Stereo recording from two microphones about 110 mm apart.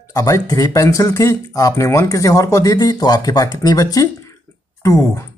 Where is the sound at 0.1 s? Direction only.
30° left (ahead or behind).